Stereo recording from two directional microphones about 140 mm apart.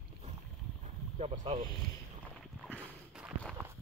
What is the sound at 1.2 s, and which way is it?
Speech, 45° right (ahead or behind).